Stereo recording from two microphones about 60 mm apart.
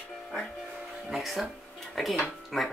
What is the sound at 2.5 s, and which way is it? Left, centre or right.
Speech, centre.